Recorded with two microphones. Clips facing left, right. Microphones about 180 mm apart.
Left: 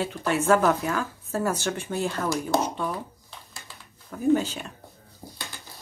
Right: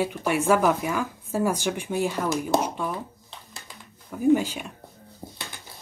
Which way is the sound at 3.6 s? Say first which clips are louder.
Right 2 dB; 10° right (ahead or behind).